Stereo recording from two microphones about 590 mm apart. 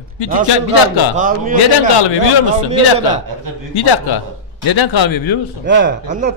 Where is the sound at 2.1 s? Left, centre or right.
Left.